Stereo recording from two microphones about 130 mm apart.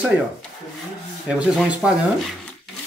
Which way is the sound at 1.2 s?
5° right (ahead or behind).